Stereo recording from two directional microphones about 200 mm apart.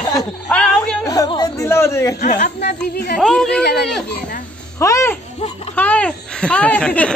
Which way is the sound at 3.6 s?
60° left (ahead or behind).